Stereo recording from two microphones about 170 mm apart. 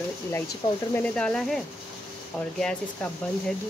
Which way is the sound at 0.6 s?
25° left (ahead or behind).